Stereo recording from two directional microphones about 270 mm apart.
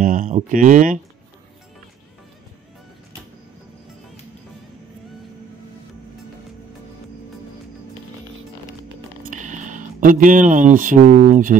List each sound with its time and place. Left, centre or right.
0.0 s speech: right
9.2 s speech: right